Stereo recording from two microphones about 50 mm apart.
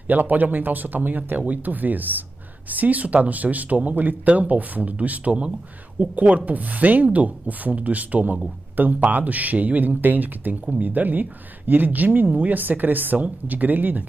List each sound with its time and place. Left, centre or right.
0.1 s speech: right